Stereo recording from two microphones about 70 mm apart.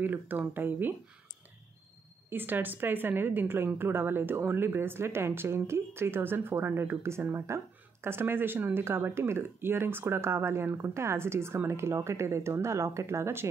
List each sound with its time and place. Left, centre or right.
0.0 s speech: right
2.2 s a woman's voice: right